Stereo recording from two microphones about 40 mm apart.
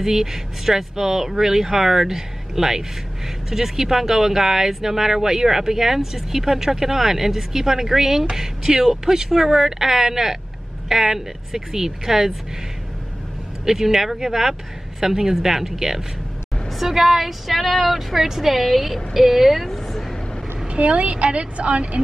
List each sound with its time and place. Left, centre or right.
0.0 s speech: centre
13.7 s a woman's voice: centre
20.6 s a woman's voice: right